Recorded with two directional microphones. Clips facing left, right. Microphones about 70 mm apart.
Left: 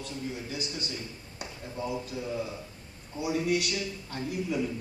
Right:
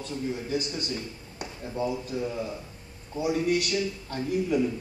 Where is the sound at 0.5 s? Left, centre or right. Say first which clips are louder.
Right 6 dB; right.